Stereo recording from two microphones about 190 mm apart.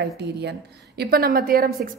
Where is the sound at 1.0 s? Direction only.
55° right (ahead or behind).